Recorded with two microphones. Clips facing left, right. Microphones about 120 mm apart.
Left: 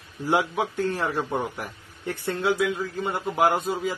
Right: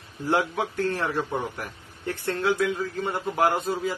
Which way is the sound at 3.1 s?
15° left (ahead or behind).